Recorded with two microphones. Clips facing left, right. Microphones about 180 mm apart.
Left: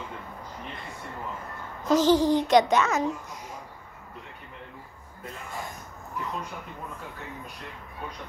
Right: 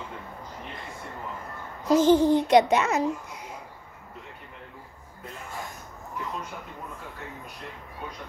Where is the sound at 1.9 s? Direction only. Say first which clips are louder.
Right 2 dB; 55° right (ahead or behind).